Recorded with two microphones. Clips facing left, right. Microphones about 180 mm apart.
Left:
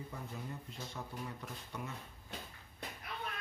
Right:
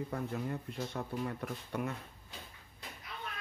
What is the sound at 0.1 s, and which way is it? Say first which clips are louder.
Speech: right 8 dB; 65° right (ahead or behind).